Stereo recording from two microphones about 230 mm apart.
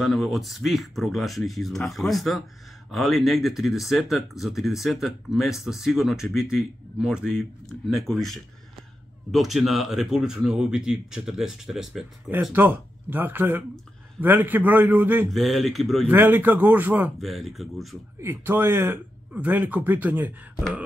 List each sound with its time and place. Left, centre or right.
0.0 s a man's voice: centre
18.2 s a man's voice: centre